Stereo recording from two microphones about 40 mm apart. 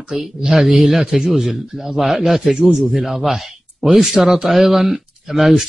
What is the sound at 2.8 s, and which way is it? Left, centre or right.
Speech, centre.